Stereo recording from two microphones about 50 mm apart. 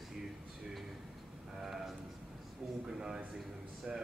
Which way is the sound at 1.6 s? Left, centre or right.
Centre.